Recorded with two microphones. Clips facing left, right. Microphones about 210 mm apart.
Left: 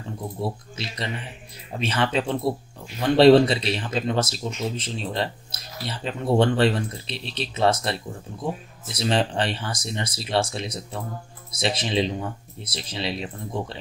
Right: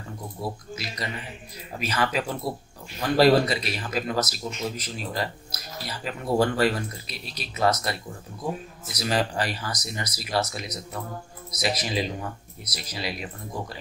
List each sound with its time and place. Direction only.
0.4 s speech: 30° left (ahead or behind)